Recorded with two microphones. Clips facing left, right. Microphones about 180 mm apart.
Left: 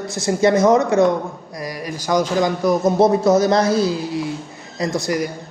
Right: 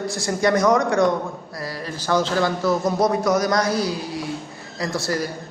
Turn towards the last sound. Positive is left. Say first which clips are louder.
# left 4 dB
turn(degrees=15)  # may be behind; listen again after turning